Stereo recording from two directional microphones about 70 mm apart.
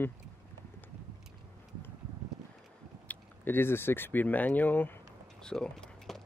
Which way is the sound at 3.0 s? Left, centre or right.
Left.